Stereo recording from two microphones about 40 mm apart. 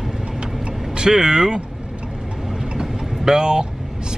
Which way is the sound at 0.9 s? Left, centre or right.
Centre.